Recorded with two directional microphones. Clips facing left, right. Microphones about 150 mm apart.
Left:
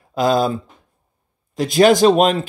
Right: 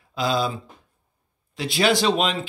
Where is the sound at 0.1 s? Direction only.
50° left (ahead or behind).